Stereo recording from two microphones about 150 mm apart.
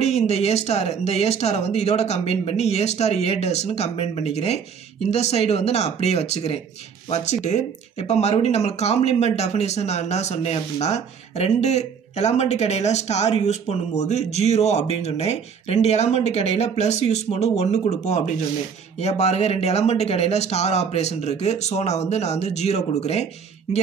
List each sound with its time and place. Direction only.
0.0 s speech: 45° left (ahead or behind)